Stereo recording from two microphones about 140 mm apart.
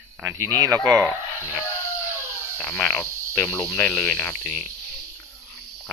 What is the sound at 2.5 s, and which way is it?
Speech, 10° left (ahead or behind).